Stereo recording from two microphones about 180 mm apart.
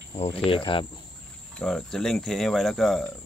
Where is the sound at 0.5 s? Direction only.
30° left (ahead or behind).